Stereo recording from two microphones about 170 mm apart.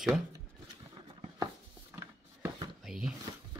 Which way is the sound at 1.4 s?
15° right (ahead or behind).